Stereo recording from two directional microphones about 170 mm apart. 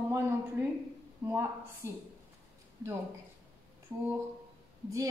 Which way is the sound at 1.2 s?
15° right (ahead or behind).